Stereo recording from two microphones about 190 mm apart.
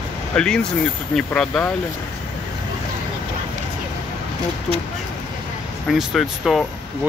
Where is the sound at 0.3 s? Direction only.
5° left (ahead or behind).